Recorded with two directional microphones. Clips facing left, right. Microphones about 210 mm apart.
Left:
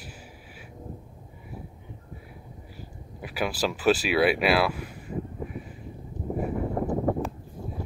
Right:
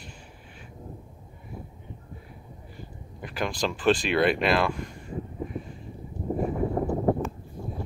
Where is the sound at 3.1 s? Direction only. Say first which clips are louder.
Left 1 dB; 5° left (ahead or behind).